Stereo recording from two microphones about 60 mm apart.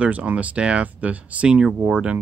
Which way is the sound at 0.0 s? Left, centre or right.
Right.